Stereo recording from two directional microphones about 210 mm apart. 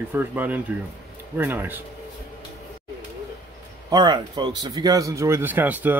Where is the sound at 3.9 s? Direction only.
20° right (ahead or behind).